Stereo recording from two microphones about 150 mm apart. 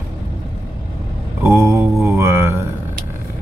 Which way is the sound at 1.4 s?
20° right (ahead or behind).